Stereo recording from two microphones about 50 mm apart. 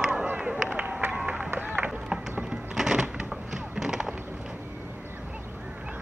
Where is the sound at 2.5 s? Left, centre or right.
Centre.